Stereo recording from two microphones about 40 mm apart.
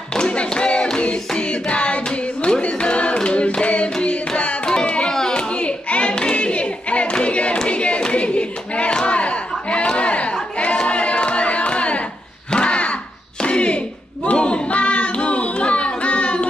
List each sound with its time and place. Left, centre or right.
0.1 s a sound: left
0.9 s hands: left
2.6 s singing: left
4.8 s a sound: left
5.1 s a sound: centre
5.5 s hands: left
7.2 s choir: left
7.6 s hands: left
8.0 s clapping: left
10.6 s crowd: left
12.4 s a sound: left
14.3 s child singing: left